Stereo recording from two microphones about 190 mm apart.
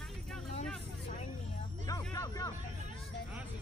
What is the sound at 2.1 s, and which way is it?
Vehicle, 20° left (ahead or behind).